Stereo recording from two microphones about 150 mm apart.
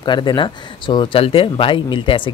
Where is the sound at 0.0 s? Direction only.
30° left (ahead or behind).